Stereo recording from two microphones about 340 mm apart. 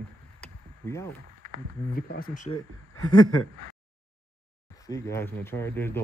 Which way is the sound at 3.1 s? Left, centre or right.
Centre.